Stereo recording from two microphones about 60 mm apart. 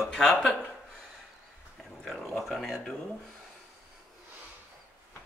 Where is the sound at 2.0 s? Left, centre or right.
Centre.